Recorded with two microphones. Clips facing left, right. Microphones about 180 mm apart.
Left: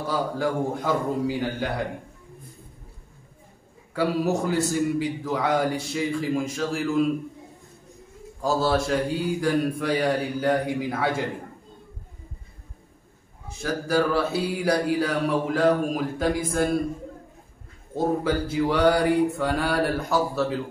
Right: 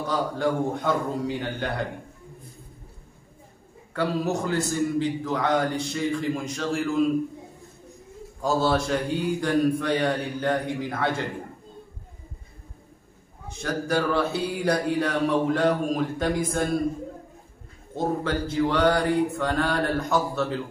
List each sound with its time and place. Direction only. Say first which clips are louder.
0.0 s mantra: even; 5° left (ahead or behind)
3.9 s a man's voice: left 2 dB; 10° left (ahead or behind)
8.4 s mantra: even; centre (ahead or behind)
13.5 s mantra: left 1 dB; 5° left (ahead or behind)
17.9 s a man's voice: left 2 dB; 10° left (ahead or behind)